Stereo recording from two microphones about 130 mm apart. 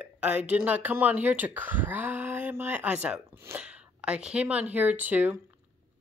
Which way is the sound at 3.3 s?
20° right (ahead or behind).